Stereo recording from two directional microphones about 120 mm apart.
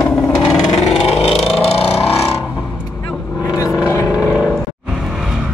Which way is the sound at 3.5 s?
25° left (ahead or behind).